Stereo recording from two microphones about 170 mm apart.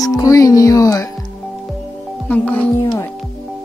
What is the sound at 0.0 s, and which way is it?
Speech, 20° left (ahead or behind).